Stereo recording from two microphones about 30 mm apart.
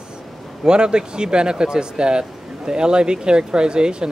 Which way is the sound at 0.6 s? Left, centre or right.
Right.